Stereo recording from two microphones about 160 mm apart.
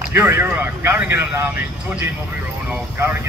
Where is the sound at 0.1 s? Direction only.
15° right (ahead or behind).